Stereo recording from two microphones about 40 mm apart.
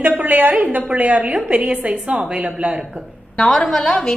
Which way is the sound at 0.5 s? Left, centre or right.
Right.